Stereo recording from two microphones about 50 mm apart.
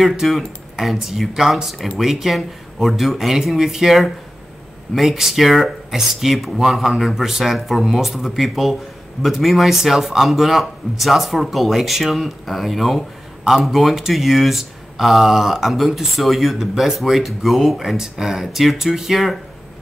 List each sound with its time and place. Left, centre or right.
0.0 s speech: centre